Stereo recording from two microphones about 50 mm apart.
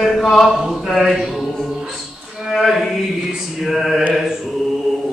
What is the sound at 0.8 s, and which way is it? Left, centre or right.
Music, centre.